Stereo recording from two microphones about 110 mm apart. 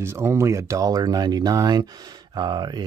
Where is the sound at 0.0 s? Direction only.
25° right (ahead or behind).